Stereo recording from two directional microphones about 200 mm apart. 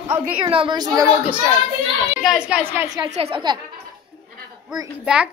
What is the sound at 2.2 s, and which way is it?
Speech, 5° right (ahead or behind).